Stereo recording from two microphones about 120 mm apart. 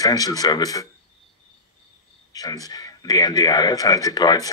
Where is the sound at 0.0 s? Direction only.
30° left (ahead or behind).